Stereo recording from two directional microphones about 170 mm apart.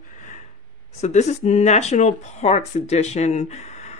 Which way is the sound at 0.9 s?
40° left (ahead or behind).